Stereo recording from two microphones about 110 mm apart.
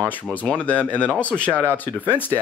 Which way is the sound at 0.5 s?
10° left (ahead or behind).